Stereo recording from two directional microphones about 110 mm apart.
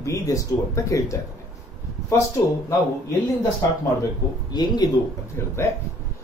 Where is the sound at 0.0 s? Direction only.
30° left (ahead or behind).